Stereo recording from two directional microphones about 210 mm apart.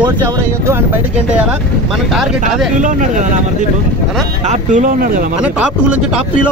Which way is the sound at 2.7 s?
35° right (ahead or behind).